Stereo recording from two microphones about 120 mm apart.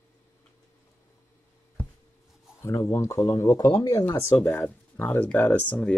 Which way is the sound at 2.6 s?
25° left (ahead or behind).